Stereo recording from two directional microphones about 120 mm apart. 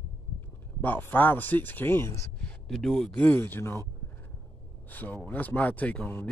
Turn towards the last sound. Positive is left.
turn(degrees=15)  # may be behind; listen again after turning